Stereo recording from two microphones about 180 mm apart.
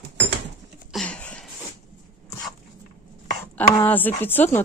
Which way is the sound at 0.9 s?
5° left (ahead or behind).